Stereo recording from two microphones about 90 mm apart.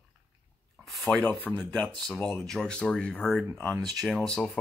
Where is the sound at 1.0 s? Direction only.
15° left (ahead or behind).